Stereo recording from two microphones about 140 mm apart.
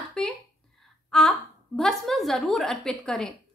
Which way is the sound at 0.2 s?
5° left (ahead or behind).